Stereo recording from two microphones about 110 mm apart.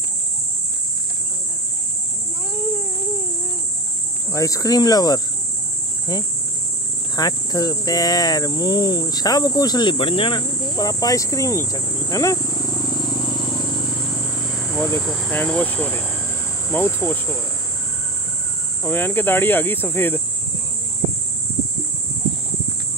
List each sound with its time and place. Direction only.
4.3 s speech: 30° left (ahead or behind)
7.2 s speech: 35° left (ahead or behind)
14.8 s speech: 15° left (ahead or behind)
15.0 s speech: 5° left (ahead or behind); by 17.4 s 25° left (ahead or behind)
18.9 s speech: 20° left (ahead or behind)